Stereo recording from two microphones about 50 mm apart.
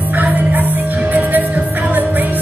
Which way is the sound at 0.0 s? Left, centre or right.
Right.